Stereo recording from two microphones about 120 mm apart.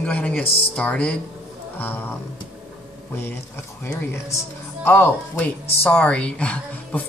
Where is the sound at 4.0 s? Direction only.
20° left (ahead or behind).